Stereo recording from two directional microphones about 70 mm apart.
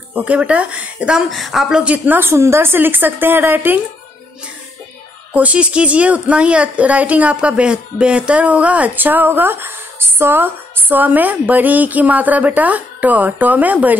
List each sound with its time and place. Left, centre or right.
0.1 s speech: centre
1.3 s speech: centre
2.0 s speech: right
5.3 s speech: centre